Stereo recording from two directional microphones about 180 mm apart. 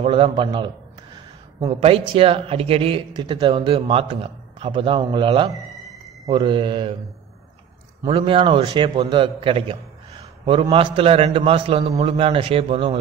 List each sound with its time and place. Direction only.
0.0 s a man's voice: 30° right (ahead or behind)
1.7 s a man's voice: 30° right (ahead or behind)
5.5 s a sound: centre (ahead or behind)
6.2 s a man's voice: 30° right (ahead or behind)
8.1 s a man's voice: 30° right (ahead or behind)